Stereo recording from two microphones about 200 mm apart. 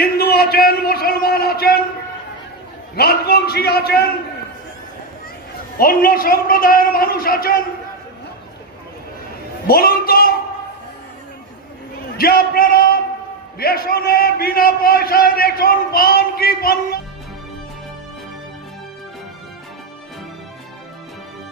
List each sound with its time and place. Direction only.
0.0 s a sound: 50° left (ahead or behind)
3.0 s a man's voice: 50° left (ahead or behind)
5.8 s a man's voice: 45° left (ahead or behind)
9.7 s a man's voice: 50° left (ahead or behind)
12.2 s a man's voice: 50° left (ahead or behind)